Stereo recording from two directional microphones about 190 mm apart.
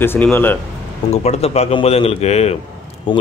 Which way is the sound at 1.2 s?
35° left (ahead or behind).